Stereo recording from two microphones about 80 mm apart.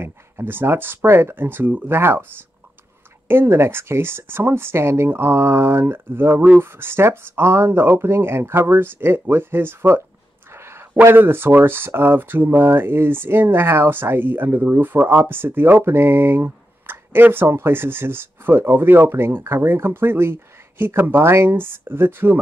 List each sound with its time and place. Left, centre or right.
0.0 s speech: right
10.5 s a sound: right
11.1 s speech: right